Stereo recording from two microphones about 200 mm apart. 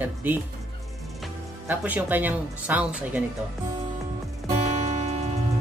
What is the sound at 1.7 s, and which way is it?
Speech, 10° right (ahead or behind).